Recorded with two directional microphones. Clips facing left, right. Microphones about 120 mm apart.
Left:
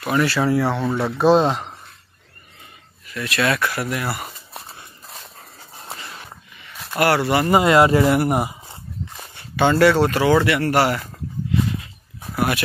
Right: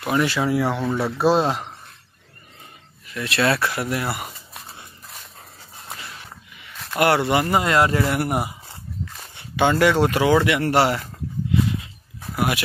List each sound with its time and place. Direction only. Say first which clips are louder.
0.0 s speech: left 2 dB; 15° right (ahead or behind)
3.1 s speech: even; 25° right (ahead or behind)
5.0 s dog: left 2 dB; 30° left (ahead or behind)
7.0 s speech: even; 20° right (ahead or behind)
7.4 s speech: left 4 dB; 10° left (ahead or behind)
9.6 s speech: left 2 dB; 15° right (ahead or behind)
12.4 s speech: left 2 dB; 10° right (ahead or behind)